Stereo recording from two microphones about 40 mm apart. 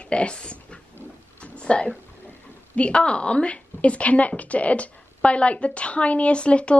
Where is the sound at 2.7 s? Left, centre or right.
Left.